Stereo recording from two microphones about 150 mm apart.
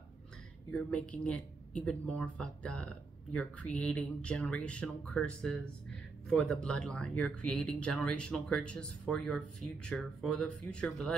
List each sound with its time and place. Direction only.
0.7 s speech: 10° left (ahead or behind)